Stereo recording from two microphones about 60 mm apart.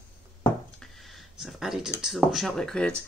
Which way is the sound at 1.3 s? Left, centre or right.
Centre.